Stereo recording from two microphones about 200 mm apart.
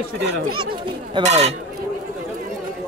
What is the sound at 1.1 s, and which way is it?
Speech, 35° right (ahead or behind).